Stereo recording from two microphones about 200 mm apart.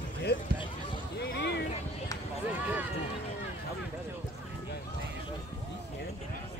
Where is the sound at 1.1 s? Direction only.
55° left (ahead or behind).